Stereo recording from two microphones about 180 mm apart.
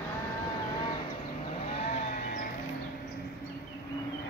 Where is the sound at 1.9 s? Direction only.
45° left (ahead or behind).